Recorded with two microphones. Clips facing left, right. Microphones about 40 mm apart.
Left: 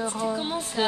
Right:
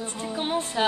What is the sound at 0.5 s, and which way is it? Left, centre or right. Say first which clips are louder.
Clapping: right 2 dB; right.